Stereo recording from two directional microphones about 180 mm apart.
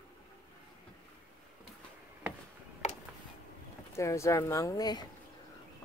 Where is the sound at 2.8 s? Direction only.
40° left (ahead or behind).